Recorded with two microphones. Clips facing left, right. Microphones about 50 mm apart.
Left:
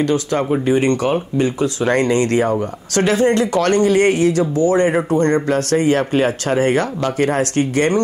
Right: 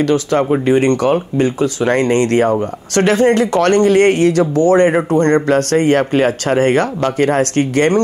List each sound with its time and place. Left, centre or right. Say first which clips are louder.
0.0 s speech: right 3 dB; right
1.8 s speech: right 2 dB; right
2.1 s speech: right 3 dB; right